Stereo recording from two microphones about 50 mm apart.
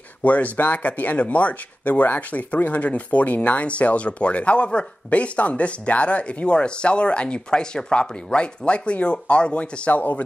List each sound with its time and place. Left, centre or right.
0.2 s speech: left